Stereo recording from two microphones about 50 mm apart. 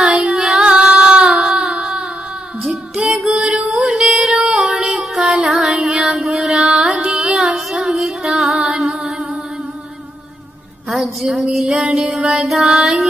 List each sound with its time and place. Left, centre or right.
0.1 s child singing: right
0.6 s female singing: right
1.3 s child singing: centre
1.8 s a sound: centre
2.6 s child singing: centre
3.3 s music: centre
3.8 s music: centre
4.5 s a sound: centre
5.6 s music: centre
6.0 s carnatic music: centre
7.5 s music: centre
10.9 s a sound: centre
11.5 s music: centre